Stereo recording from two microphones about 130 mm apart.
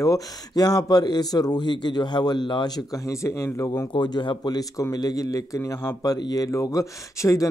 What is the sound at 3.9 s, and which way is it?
Speech, 35° left (ahead or behind).